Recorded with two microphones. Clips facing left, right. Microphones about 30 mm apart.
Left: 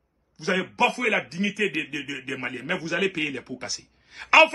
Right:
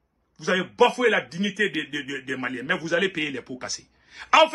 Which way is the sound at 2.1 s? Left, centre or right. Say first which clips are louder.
Right 2 dB; centre.